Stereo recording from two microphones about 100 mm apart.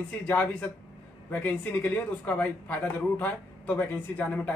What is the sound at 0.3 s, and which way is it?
Speech, 20° left (ahead or behind).